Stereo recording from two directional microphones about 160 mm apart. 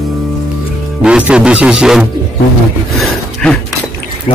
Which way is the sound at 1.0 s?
5° right (ahead or behind).